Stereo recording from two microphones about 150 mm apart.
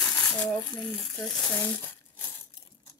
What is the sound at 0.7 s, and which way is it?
Speech, centre (ahead or behind).